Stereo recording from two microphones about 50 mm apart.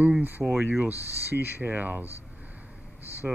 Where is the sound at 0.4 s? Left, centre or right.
Right.